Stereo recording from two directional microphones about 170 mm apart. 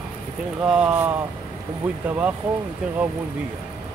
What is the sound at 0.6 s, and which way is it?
Speech, 5° right (ahead or behind).